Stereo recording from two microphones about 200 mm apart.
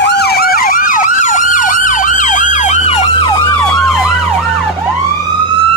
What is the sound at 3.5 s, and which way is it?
Emergency vehicle, 5° left (ahead or behind).